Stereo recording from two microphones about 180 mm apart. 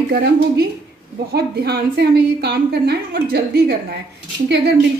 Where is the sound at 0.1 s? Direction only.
60° right (ahead or behind).